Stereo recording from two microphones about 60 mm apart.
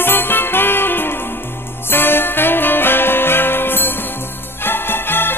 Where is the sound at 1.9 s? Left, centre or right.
Left.